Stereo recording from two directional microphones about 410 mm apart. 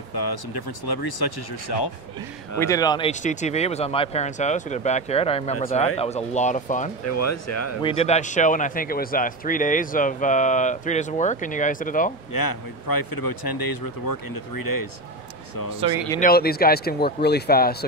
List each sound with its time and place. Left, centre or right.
0.1 s speech: left
2.6 s speech: centre
7.1 s speech: left
7.8 s speech: centre
12.3 s speech: left
16.1 s speech: centre